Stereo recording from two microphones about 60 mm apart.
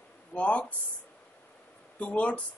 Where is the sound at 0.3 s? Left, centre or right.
Left.